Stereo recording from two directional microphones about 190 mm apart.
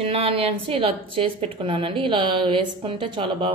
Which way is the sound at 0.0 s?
30° right (ahead or behind).